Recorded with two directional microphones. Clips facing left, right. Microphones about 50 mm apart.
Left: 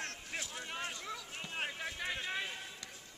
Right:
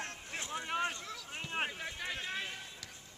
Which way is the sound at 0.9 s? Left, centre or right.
Centre.